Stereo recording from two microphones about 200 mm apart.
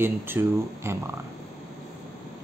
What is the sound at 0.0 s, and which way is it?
Speech, 10° right (ahead or behind).